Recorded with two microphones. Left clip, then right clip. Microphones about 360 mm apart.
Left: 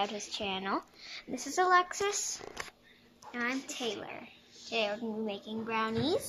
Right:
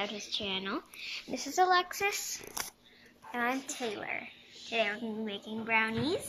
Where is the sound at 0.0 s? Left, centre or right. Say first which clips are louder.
Left 1 dB; centre.